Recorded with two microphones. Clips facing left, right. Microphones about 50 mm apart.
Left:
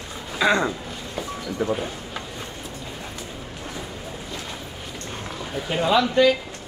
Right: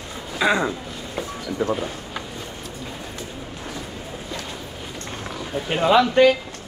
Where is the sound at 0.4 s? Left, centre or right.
Centre.